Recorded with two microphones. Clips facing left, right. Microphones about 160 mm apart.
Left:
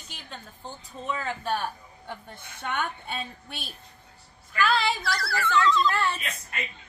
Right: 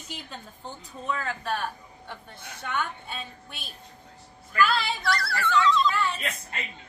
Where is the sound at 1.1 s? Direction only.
20° left (ahead or behind).